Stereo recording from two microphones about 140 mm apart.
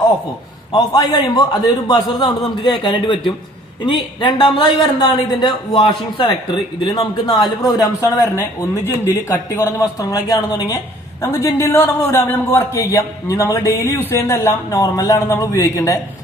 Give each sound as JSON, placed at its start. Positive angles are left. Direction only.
{"t": 0.7, "sound": "speech", "side_deg": 30}